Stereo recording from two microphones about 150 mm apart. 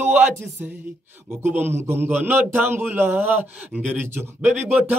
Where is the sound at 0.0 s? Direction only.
15° right (ahead or behind).